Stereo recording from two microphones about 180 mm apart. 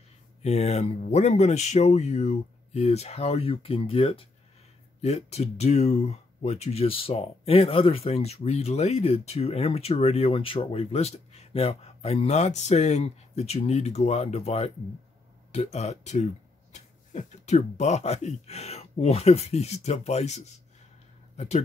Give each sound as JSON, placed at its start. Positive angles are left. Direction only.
{"t": 0.4, "sound": "speech", "side_deg": 35}